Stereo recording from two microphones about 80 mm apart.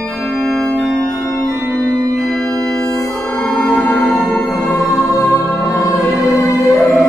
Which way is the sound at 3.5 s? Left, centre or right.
Centre.